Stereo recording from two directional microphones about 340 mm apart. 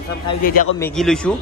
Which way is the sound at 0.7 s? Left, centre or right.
Centre.